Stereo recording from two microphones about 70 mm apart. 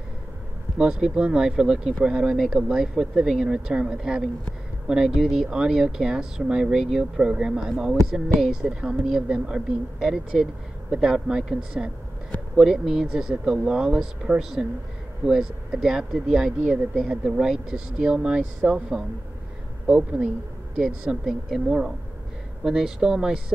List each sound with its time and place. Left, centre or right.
0.7 s speech: centre